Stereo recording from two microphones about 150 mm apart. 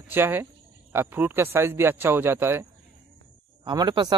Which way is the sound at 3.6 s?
30° right (ahead or behind).